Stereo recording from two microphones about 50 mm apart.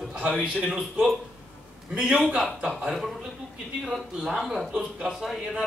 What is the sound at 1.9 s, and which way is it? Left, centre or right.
Speech, centre.